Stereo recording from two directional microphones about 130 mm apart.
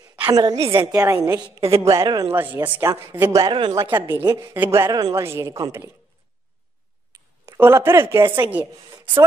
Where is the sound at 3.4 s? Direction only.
35° right (ahead or behind).